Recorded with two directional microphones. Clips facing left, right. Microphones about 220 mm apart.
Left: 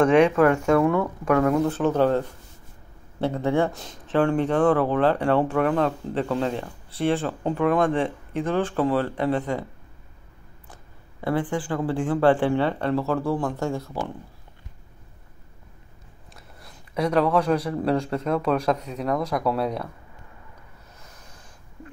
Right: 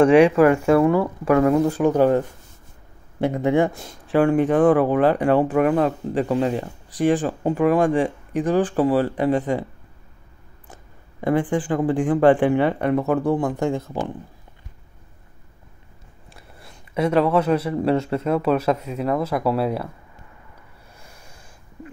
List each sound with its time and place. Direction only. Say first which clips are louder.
0.0 s speech: right 4 dB; 10° right (ahead or behind)
11.1 s speech: right 5 dB; 20° right (ahead or behind)
16.6 s speech: right 3 dB; 5° right (ahead or behind)
21.0 s a sound: right 2 dB; 10° right (ahead or behind)